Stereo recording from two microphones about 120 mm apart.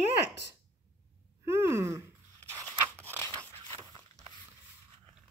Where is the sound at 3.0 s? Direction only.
15° left (ahead or behind).